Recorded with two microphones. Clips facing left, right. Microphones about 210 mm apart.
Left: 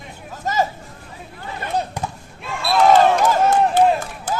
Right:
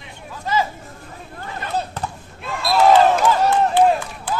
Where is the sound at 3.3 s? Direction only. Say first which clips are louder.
Left 1 dB; 40° left (ahead or behind).